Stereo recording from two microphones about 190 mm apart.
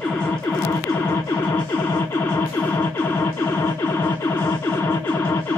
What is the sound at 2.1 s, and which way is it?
Music, 15° left (ahead or behind).